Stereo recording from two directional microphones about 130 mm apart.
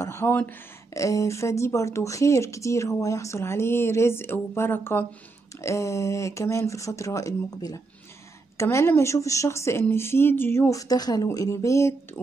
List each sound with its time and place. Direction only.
0.0 s speech: 20° left (ahead or behind)